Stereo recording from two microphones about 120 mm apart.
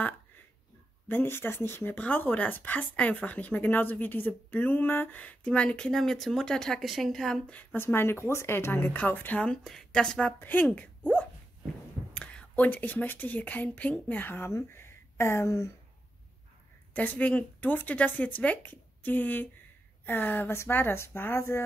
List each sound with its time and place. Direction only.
1.0 s speech: 20° left (ahead or behind)
12.2 s speech: 10° left (ahead or behind)
16.9 s a woman's voice: 15° left (ahead or behind)